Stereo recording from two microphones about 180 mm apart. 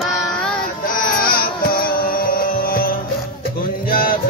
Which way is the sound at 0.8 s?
50° left (ahead or behind).